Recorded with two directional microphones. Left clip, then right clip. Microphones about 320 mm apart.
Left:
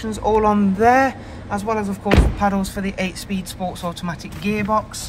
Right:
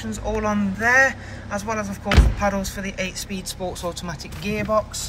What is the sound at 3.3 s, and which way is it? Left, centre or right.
Speech, centre.